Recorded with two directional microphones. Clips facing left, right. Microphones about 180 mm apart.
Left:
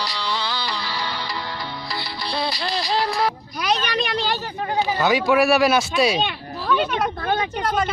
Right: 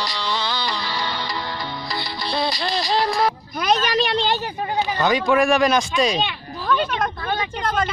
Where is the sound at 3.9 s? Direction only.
30° right (ahead or behind).